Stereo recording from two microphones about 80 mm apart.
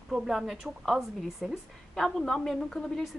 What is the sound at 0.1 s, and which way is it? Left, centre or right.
A woman's voice, centre.